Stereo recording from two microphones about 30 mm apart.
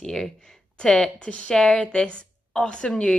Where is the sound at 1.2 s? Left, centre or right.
Left.